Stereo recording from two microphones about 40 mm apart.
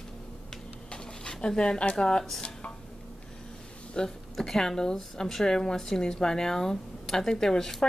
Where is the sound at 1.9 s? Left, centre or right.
Left.